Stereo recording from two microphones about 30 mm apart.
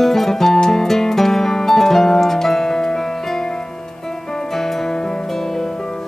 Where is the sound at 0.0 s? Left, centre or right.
Centre.